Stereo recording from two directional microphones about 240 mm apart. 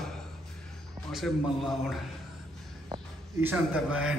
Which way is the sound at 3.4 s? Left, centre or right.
Centre.